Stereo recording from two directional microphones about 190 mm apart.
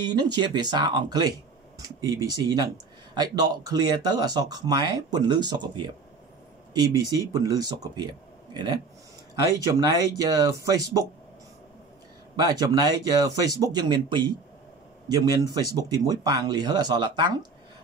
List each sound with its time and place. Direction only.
0.0 s speech: 20° right (ahead or behind)
12.4 s speech: 20° right (ahead or behind)